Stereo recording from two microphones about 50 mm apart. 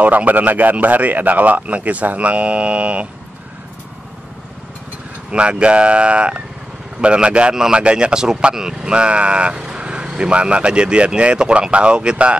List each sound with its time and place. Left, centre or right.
0.0 s a man's voice: right
5.3 s speech: right
7.5 s speech: centre